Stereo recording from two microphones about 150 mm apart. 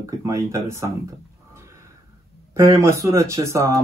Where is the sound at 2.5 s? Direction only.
20° right (ahead or behind).